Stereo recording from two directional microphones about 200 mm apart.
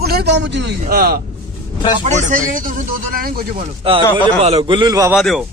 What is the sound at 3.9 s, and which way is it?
A man's voice, 30° right (ahead or behind).